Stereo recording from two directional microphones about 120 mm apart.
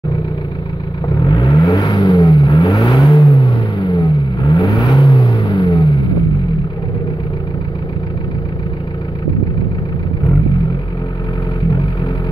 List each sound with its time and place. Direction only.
1.3 s vehicle: 40° left (ahead or behind)